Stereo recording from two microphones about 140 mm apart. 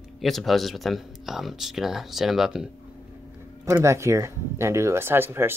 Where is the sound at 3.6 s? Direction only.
20° right (ahead or behind).